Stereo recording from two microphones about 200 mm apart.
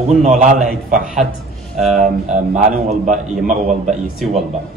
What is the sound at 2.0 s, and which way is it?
A man's voice, 35° right (ahead or behind).